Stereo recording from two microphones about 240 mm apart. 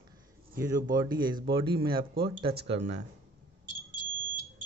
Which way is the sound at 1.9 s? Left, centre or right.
Right.